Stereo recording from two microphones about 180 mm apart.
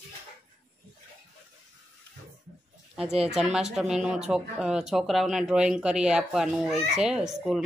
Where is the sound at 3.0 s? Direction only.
35° right (ahead or behind).